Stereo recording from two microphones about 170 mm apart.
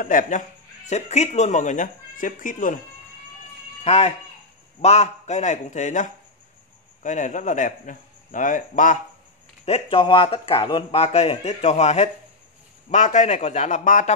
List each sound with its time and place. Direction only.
0.0 s speech: 50° left (ahead or behind)
3.8 s speech: 40° left (ahead or behind)
9.7 s speech: 35° left (ahead or behind)